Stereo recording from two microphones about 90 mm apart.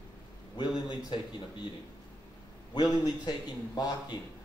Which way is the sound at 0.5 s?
55° left (ahead or behind).